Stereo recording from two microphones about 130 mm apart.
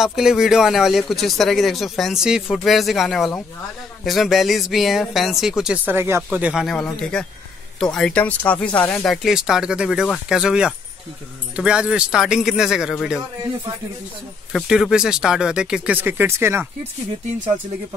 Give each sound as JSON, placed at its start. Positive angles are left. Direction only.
{"t": 0.0, "sound": "speech", "side_deg": -5}
{"t": 5.9, "sound": "speech", "side_deg": -20}
{"t": 6.5, "sound": "speech", "side_deg": 0}
{"t": 14.5, "sound": "speech", "side_deg": -5}